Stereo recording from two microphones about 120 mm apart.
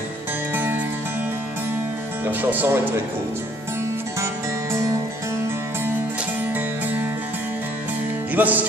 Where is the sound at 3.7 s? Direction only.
25° right (ahead or behind).